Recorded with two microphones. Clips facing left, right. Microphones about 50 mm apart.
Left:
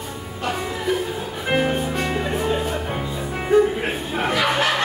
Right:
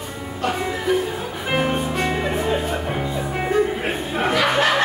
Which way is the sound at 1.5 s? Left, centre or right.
Centre.